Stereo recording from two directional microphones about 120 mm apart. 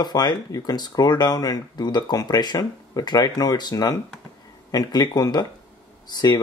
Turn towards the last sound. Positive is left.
turn(degrees=35)  # may be behind; listen again after turning